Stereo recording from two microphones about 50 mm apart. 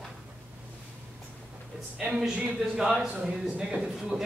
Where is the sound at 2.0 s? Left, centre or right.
Centre.